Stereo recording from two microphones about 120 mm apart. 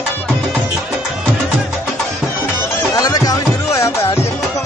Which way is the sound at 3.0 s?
30° left (ahead or behind).